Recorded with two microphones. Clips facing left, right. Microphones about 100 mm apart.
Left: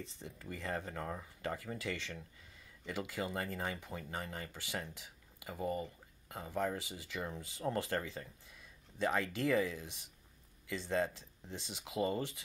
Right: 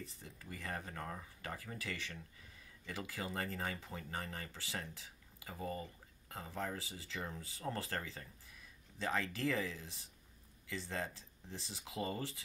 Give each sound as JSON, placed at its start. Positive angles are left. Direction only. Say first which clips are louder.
{"t": 0.0, "sound": "speech", "louder": "left 4 dB", "side_deg": 25}